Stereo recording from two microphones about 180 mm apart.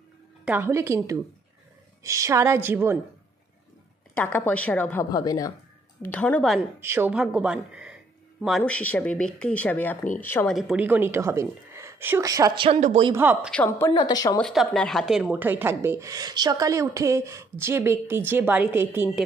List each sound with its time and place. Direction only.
0.5 s speech: 10° right (ahead or behind)
4.1 s speech: 10° left (ahead or behind)
5.1 s speech: 20° left (ahead or behind)
6.0 s speech: 10° left (ahead or behind)
6.8 s speech: 15° right (ahead or behind); by 10.5 s 10° left (ahead or behind)
10.5 s speech: centre (ahead or behind); by 12.6 s 20° right (ahead or behind)
12.6 s speech: 35° right (ahead or behind)
13.1 s speech: 10° right (ahead or behind)
13.5 s speech: 10° left (ahead or behind)
14.4 s speech: centre (ahead or behind)